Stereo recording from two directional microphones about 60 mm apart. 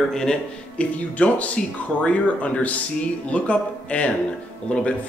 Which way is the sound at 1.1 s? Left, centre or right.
Left.